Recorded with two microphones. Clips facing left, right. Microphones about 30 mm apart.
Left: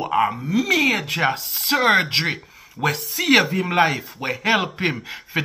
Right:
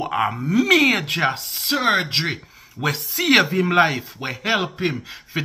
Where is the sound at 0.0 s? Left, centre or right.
Centre.